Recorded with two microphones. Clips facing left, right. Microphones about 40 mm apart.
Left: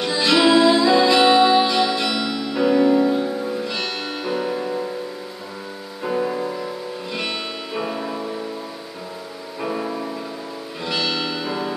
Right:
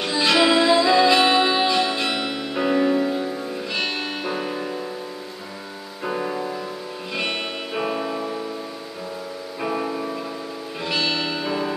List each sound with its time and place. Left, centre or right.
0.0 s music: centre
1.8 s music: right
6.0 s music: centre
7.7 s music: centre
9.6 s music: centre
10.9 s music: right